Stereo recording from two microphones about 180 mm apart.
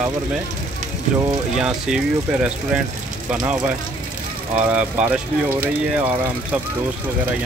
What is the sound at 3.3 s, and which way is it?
Speech, 5° right (ahead or behind).